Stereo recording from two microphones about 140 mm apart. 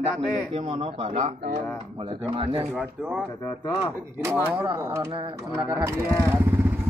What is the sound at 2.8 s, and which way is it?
Speech, 10° right (ahead or behind).